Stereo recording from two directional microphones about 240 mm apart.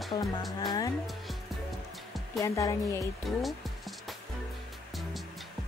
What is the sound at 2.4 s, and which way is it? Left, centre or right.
Speech, centre.